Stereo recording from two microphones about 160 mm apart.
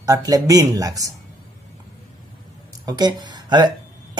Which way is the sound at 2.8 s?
25° right (ahead or behind).